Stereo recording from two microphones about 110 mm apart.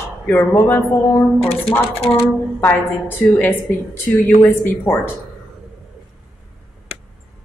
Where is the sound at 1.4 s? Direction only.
65° left (ahead or behind).